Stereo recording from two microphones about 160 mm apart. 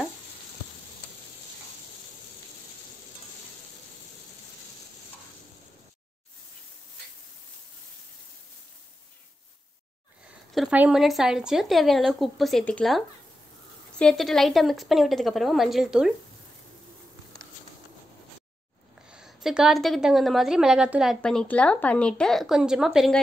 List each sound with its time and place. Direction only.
10.5 s a woman's voice: 5° right (ahead or behind)
19.0 s a woman's voice: 5° right (ahead or behind)